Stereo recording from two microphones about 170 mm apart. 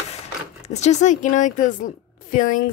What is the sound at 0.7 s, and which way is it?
A woman's voice, 40° left (ahead or behind).